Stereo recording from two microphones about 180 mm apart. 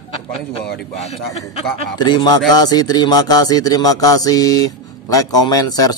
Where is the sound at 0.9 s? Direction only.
35° left (ahead or behind).